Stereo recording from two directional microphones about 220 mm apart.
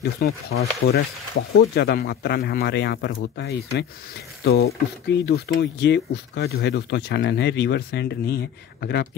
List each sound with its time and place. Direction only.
0.2 s speech: 45° left (ahead or behind)
1.3 s speech: 65° left (ahead or behind)
1.8 s speech: 45° left (ahead or behind)